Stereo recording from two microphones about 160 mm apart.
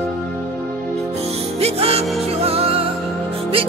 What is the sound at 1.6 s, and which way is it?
Music, 40° right (ahead or behind).